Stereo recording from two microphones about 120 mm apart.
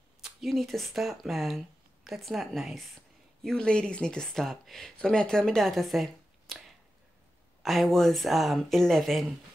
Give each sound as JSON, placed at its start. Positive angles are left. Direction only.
{"t": 0.2, "sound": "speech", "side_deg": 0}
{"t": 6.5, "sound": "a sound", "side_deg": 0}
{"t": 7.6, "sound": "speech", "side_deg": 0}